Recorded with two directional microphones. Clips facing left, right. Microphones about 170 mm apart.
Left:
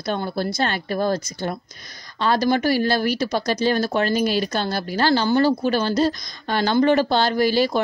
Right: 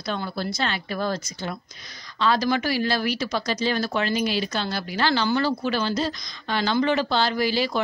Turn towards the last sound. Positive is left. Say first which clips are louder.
# left 5 dB
turn(degrees=50)  # may be behind; listen again after turning